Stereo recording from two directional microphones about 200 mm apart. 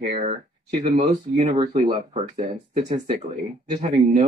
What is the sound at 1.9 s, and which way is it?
Speech, 30° right (ahead or behind).